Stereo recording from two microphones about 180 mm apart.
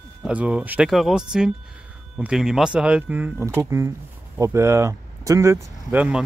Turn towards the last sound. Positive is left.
turn(degrees=-10)  # may be behind; listen again after turning